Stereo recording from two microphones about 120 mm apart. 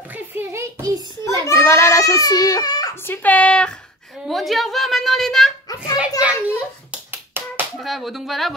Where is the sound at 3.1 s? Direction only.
15° left (ahead or behind).